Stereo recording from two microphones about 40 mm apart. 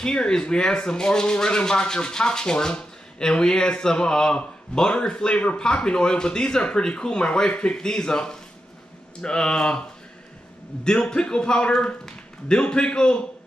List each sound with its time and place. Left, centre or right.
0.0 s speech: left